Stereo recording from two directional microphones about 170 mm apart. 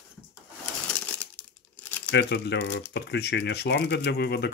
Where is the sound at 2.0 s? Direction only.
85° left.